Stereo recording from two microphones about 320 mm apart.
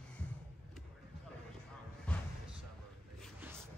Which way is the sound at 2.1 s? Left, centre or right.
Centre.